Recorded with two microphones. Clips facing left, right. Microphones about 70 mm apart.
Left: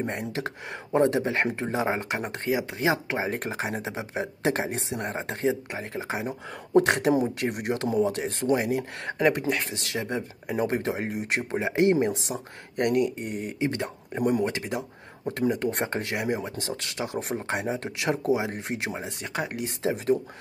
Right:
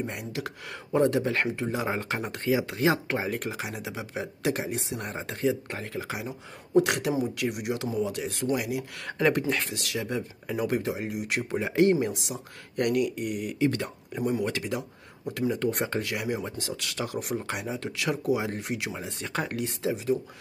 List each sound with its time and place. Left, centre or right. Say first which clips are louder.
0.0 s speech: left 3 dB; left; by 3.3 s centre
3.3 s speech: left 2 dB; left
4.8 s speech: left 3 dB; left
5.7 s speech: left 1 dB; centre
6.2 s speech: left 5 dB; left
10.8 s speech: left 2 dB; left
19.2 s speech: right 1 dB; centre
19.8 s speech: left 2 dB; left